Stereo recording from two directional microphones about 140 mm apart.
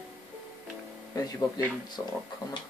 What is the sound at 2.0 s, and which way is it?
Speech, 25° left (ahead or behind).